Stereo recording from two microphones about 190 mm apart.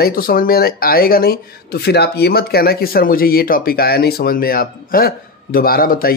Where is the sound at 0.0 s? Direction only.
50° left (ahead or behind).